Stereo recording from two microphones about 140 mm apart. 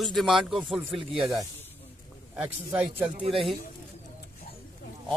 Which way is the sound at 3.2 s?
40° right (ahead or behind).